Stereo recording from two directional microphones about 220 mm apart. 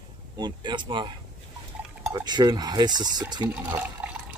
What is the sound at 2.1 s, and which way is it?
Speech, 20° right (ahead or behind).